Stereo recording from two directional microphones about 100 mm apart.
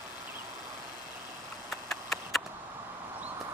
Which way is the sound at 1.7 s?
5° left (ahead or behind).